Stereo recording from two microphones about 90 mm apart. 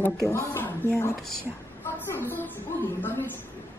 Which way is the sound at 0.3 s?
25° left (ahead or behind).